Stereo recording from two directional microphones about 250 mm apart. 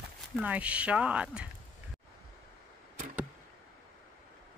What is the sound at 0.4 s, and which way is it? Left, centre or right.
Speech, centre.